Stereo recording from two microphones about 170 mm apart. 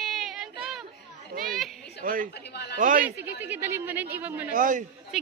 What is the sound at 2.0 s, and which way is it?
Speech, 55° right (ahead or behind).